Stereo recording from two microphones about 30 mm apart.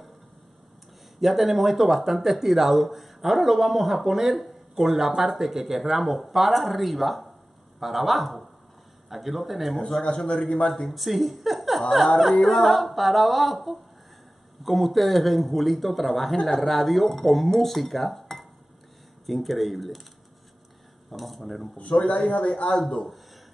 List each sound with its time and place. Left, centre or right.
1.2 s speech: centre
10.2 s a man's voice: left
10.9 s a woman's voice: centre
21.1 s speech: centre
21.9 s a man's voice: left
22.4 s a man's voice: left
22.7 s speech: left